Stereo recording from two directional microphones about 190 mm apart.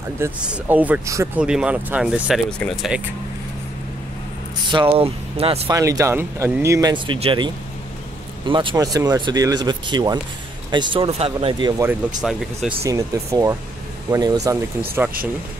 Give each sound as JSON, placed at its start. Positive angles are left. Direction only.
{"t": 0.2, "sound": "speech", "side_deg": -10}
{"t": 4.6, "sound": "speech", "side_deg": -25}
{"t": 5.7, "sound": "speech", "side_deg": -15}
{"t": 11.8, "sound": "speech", "side_deg": -5}
{"t": 12.8, "sound": "speech", "side_deg": -15}